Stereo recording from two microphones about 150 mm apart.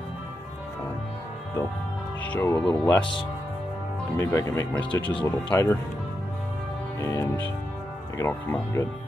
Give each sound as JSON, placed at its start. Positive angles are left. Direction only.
{"t": 2.2, "sound": "speech", "side_deg": 10}
{"t": 2.9, "sound": "speech", "side_deg": 35}
{"t": 4.2, "sound": "speech", "side_deg": 15}
{"t": 7.0, "sound": "speech", "side_deg": 20}